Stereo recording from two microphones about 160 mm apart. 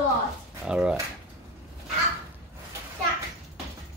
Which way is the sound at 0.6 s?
5° right (ahead or behind).